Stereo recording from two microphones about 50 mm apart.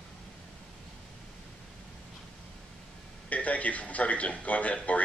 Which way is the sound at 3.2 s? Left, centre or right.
Left.